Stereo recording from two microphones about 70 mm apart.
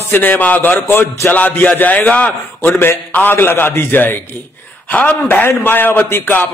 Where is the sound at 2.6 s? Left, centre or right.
Left.